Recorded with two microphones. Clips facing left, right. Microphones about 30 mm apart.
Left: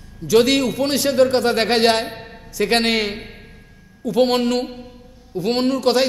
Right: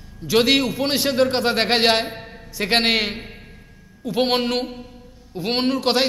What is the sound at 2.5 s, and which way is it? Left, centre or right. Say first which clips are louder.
Speech: left 1 dB; centre.